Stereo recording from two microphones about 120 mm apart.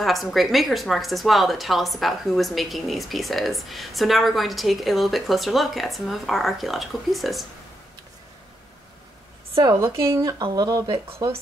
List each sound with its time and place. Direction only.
0.0 s a woman's voice: centre (ahead or behind)
9.6 s a woman's voice: 25° right (ahead or behind)